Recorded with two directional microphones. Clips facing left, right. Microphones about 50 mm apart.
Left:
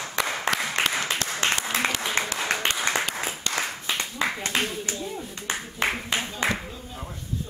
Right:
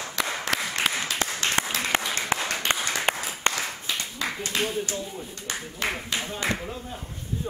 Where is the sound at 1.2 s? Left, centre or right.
Right.